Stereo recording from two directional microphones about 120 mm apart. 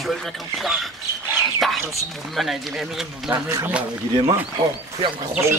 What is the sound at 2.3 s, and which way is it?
Speech, centre (ahead or behind).